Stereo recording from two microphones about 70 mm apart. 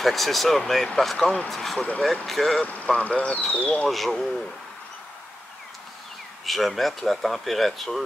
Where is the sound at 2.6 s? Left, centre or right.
Left.